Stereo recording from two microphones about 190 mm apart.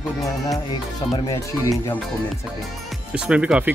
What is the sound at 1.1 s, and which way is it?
Speech, 15° left (ahead or behind).